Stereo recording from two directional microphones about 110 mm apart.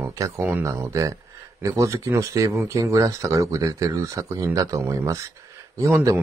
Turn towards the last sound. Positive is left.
turn(degrees=-25)  # may be behind; listen again after turning